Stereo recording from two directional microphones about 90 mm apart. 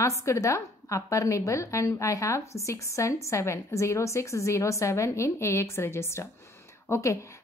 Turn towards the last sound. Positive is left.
turn(degrees=35)  # may be behind; listen again after turning